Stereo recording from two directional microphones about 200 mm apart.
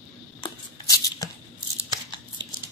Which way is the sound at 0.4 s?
20° left (ahead or behind).